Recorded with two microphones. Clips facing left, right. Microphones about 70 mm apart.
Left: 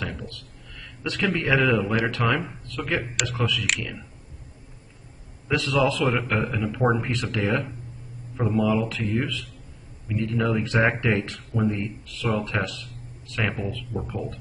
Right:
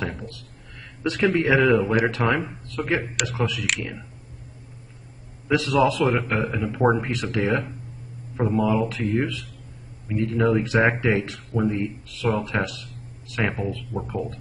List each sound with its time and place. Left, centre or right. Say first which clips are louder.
0.7 s speech: right 4 dB; centre
5.5 s speech: right 3 dB; centre
8.4 s speech: right 1 dB; centre
13.4 s speech: right 2 dB; centre